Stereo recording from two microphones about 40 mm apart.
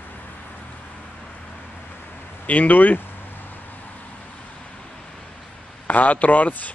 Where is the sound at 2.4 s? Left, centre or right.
Left.